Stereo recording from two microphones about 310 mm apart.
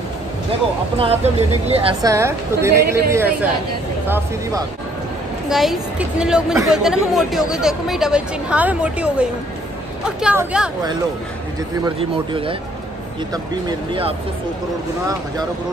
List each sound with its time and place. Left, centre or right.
0.9 s a woman's voice: centre
11.8 s a woman's voice: centre